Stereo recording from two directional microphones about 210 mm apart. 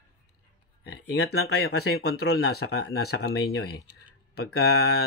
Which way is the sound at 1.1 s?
50° left (ahead or behind).